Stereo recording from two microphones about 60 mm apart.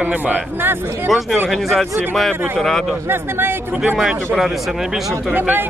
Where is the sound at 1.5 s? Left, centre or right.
Centre.